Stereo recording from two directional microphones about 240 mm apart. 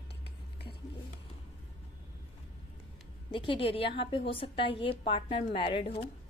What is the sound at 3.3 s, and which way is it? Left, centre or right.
A woman's voice, left.